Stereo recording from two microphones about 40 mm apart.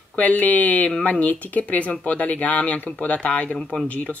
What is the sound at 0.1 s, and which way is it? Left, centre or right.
Speech, left.